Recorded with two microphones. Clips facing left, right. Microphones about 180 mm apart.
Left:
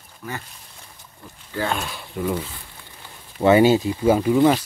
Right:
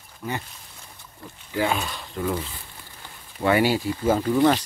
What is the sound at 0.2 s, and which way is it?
Speech, 25° right (ahead or behind).